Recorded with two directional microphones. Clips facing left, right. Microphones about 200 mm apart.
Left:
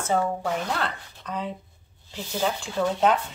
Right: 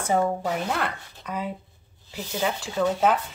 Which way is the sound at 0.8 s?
10° right (ahead or behind).